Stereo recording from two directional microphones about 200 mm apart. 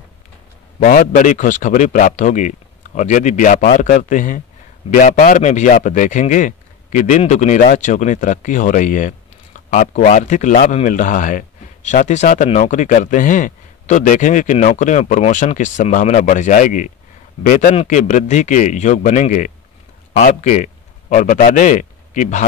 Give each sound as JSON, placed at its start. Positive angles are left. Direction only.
{"t": 0.7, "sound": "a man's voice", "side_deg": 40}